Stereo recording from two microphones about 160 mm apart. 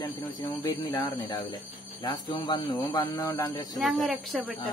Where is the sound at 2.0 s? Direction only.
25° left (ahead or behind).